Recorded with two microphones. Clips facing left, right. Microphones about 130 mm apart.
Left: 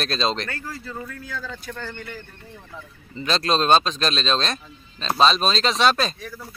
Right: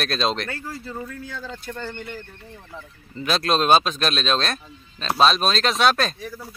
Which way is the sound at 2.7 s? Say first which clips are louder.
Even; 5° right (ahead or behind).